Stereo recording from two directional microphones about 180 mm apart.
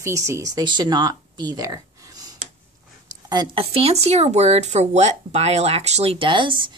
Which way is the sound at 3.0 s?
25° right (ahead or behind).